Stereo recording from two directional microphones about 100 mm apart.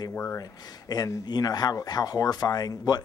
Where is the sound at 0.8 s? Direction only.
40° left (ahead or behind).